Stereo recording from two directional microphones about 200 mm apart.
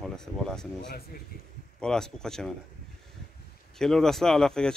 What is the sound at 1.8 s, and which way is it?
Speech, 5° left (ahead or behind).